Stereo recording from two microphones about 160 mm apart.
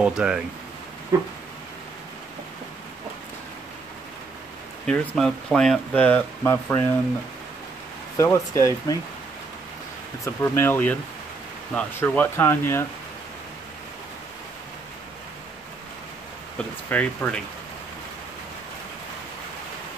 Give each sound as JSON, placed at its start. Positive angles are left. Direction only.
{"t": 0.0, "sound": "speech", "side_deg": -5}
{"t": 1.1, "sound": "a sound", "side_deg": -20}
{"t": 4.8, "sound": "speech", "side_deg": 5}
{"t": 8.2, "sound": "speech", "side_deg": 15}
{"t": 10.2, "sound": "speech", "side_deg": 15}
{"t": 16.9, "sound": "speech", "side_deg": 10}